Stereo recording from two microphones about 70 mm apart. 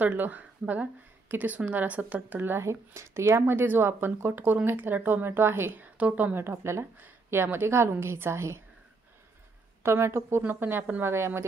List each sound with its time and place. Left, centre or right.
0.0 s speech: right
2.6 s a woman's voice: right
9.8 s a woman's voice: right